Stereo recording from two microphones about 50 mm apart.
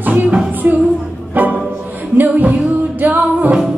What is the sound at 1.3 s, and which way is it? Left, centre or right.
Music, right.